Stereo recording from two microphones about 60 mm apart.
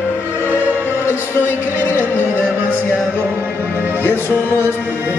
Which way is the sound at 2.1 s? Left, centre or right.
Left.